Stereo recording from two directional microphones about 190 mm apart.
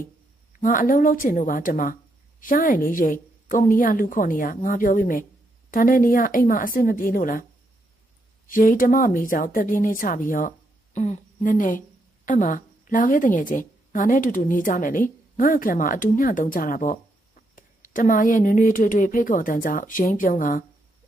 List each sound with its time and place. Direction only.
0.6 s a woman's voice: 45° left (ahead or behind)
8.5 s a woman's voice: 45° left (ahead or behind)